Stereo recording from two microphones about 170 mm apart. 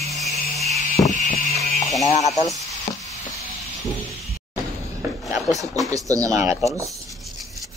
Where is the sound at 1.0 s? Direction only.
20° left (ahead or behind).